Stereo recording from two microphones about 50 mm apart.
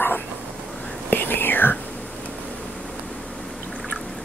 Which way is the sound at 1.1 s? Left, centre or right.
Left.